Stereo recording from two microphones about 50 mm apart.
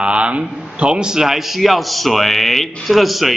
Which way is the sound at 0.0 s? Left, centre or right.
Right.